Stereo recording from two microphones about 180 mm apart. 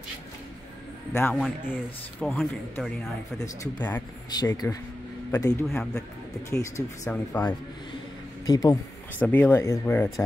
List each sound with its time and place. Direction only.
1.1 s speech: 10° left (ahead or behind)
4.3 s speech: 20° left (ahead or behind)
5.7 s speech: 5° left (ahead or behind)
8.5 s speech: 20° left (ahead or behind)